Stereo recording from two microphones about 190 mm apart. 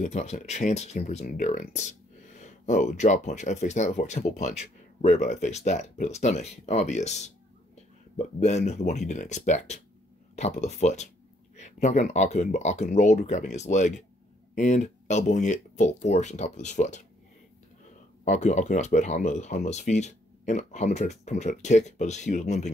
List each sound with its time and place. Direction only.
0.0 s speech: 35° left (ahead or behind)
18.2 s speech: 40° left (ahead or behind)